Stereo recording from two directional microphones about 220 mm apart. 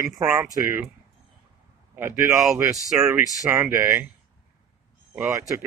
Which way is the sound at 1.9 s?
10° right (ahead or behind).